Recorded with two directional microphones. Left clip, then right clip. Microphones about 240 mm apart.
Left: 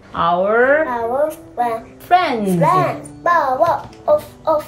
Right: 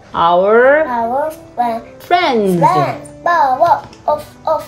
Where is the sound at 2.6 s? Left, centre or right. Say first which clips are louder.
Left 1 dB; centre.